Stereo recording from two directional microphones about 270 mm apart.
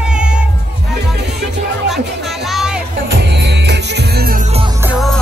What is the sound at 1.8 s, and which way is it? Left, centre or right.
Music, centre.